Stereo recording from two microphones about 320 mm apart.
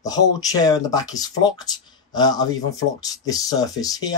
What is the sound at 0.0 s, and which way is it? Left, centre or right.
Speech, centre.